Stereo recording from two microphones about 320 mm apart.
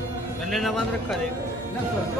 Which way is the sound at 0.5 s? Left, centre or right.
Centre.